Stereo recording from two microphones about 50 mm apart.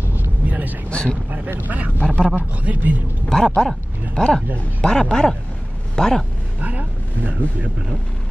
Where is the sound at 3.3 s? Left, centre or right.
Centre.